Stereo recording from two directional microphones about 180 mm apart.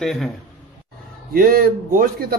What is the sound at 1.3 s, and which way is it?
A man's voice, 55° right (ahead or behind).